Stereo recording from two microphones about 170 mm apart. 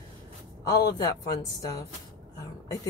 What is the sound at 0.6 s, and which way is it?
Speech, 20° left (ahead or behind).